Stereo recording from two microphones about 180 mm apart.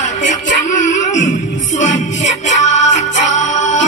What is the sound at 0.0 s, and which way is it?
Music, 45° left (ahead or behind).